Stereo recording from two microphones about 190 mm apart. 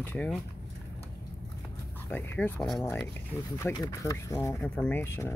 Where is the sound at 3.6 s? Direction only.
15° left (ahead or behind).